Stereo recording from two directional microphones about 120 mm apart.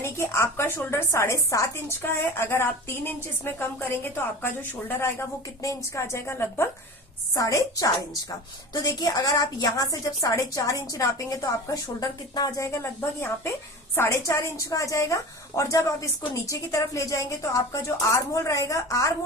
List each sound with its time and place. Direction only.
0.0 s a woman's voice: 25° left (ahead or behind)
5.6 s a woman's voice: 25° left (ahead or behind)